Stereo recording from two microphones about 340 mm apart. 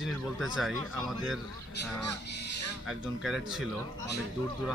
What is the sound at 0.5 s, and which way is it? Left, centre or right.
Speech, centre.